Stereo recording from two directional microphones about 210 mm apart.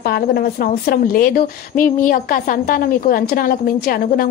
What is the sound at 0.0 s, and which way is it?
A woman's voice, 45° left (ahead or behind).